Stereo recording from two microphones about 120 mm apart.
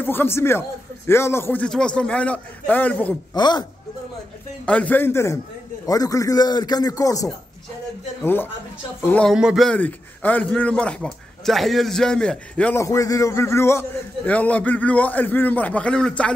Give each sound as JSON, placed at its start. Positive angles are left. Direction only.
{"t": 0.0, "sound": "speech", "side_deg": 15}
{"t": 1.7, "sound": "a man's voice", "side_deg": 5}
{"t": 3.3, "sound": "speech", "side_deg": 40}
{"t": 4.6, "sound": "a man's voice", "side_deg": 10}
{"t": 9.0, "sound": "a man's voice", "side_deg": 15}
{"t": 9.3, "sound": "a man's voice", "side_deg": -5}
{"t": 9.7, "sound": "a man's voice", "side_deg": 15}
{"t": 12.7, "sound": "a man's voice", "side_deg": 25}